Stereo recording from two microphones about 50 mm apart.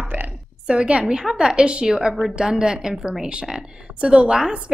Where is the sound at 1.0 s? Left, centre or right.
Centre.